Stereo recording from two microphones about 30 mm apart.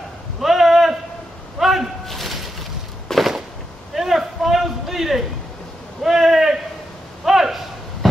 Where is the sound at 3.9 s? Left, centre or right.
Centre.